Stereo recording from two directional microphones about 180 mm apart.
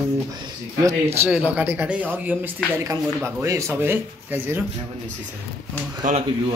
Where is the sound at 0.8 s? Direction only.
15° right (ahead or behind).